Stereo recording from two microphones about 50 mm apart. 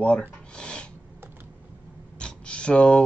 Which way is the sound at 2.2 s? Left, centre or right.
Left.